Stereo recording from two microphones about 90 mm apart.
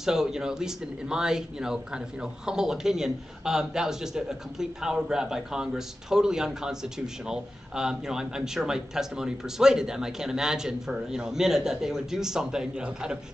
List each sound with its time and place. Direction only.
0.0 s a man's voice: 5° right (ahead or behind)